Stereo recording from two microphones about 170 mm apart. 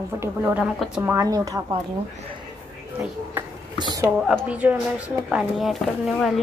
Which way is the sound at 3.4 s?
10° right (ahead or behind).